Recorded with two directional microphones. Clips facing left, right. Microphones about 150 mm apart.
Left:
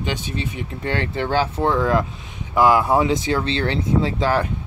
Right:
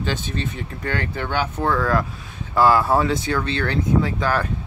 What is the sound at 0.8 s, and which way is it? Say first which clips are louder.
Speech: left 3 dB; 25° left (ahead or behind).